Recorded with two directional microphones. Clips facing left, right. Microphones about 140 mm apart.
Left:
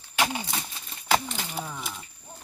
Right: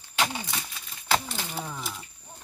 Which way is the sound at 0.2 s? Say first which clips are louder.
Left 2 dB; 15° left (ahead or behind).